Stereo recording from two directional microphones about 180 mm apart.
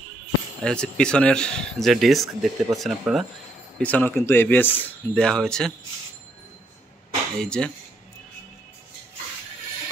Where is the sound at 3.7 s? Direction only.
10° left (ahead or behind).